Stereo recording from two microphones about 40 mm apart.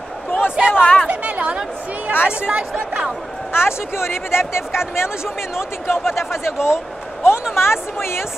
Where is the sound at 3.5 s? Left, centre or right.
Left.